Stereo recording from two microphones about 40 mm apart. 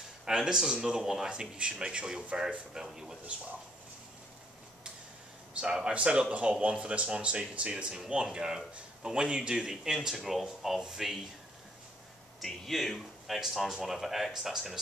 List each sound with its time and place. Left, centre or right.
0.2 s speech: centre
5.5 s speech: right
9.9 s speech: centre
12.6 s speech: centre
13.4 s speech: centre